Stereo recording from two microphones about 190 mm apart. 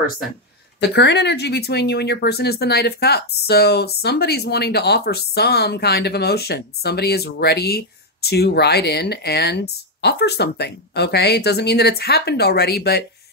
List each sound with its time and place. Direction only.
0.7 s speech: 60° left (ahead or behind)